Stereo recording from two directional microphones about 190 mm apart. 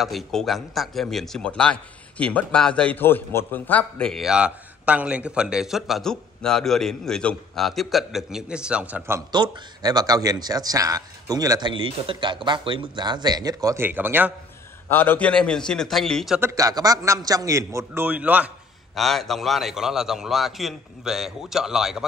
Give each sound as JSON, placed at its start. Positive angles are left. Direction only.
{"t": 0.0, "sound": "speech", "side_deg": 0}
{"t": 14.9, "sound": "speech", "side_deg": 10}
{"t": 16.3, "sound": "a man's voice", "side_deg": -15}